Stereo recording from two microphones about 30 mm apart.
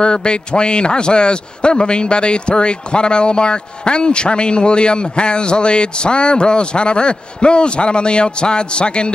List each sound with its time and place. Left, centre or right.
0.0 s a man's voice: left